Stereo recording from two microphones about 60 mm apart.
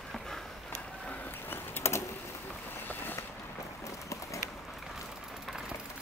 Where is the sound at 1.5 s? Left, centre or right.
Left.